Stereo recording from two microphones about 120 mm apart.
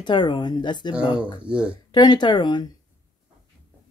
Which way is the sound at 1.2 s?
10° right (ahead or behind).